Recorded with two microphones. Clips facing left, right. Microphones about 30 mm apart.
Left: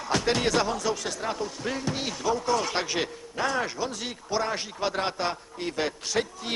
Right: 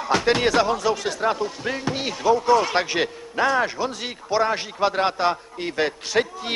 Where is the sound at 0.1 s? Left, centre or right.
Right.